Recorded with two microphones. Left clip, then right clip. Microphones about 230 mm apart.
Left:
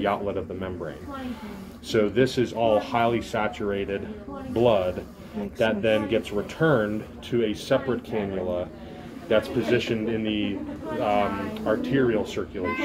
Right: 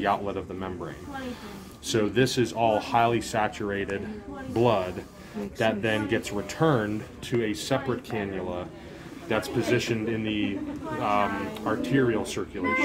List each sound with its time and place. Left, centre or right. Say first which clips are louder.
0.0 s speech: left 1 dB; right
1.9 s speech: left 2 dB; right